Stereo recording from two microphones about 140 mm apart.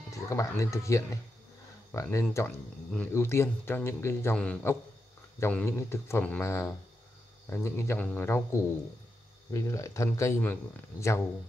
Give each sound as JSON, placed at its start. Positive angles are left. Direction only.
{"t": 0.1, "sound": "speech", "side_deg": 20}